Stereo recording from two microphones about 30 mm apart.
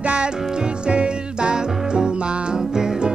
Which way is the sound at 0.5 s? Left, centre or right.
Right.